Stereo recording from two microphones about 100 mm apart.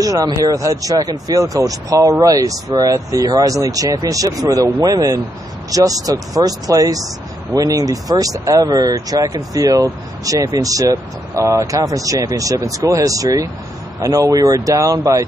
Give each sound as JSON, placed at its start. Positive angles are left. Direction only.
{"t": 0.0, "sound": "speech", "side_deg": -35}